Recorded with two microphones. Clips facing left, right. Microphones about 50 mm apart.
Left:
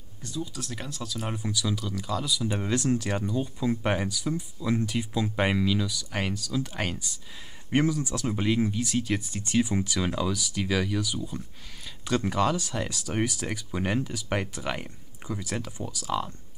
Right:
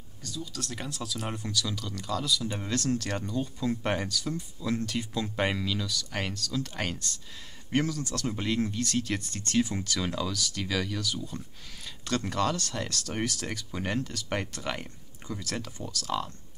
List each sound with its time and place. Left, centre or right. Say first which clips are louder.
0.2 s speech: left 4 dB; left
0.6 s speech: even; centre